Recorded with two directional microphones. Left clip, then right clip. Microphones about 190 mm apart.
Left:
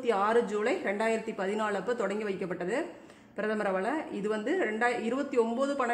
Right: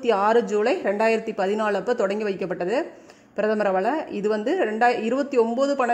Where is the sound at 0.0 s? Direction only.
25° right (ahead or behind).